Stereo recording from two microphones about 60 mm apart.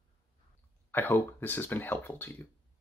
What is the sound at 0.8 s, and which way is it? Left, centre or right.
Speech, left.